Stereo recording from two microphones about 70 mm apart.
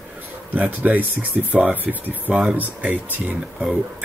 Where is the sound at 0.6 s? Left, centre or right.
Right.